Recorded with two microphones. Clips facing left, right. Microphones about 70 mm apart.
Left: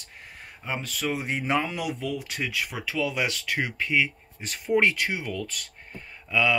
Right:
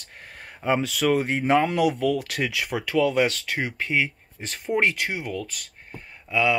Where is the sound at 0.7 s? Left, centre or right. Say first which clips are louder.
Right 8 dB; right.